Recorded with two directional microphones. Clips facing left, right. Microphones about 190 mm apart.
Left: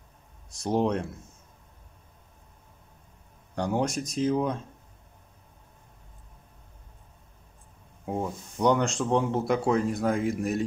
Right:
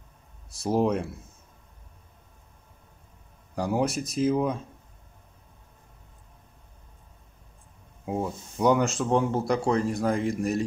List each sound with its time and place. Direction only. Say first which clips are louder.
0.6 s speech: right 1 dB; 5° right (ahead or behind)
3.5 s speech: right 1 dB; 5° right (ahead or behind)
8.0 s speech: right 1 dB; 5° right (ahead or behind)